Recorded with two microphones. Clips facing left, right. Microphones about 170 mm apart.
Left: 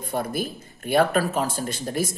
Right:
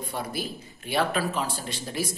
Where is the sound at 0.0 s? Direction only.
50° left (ahead or behind).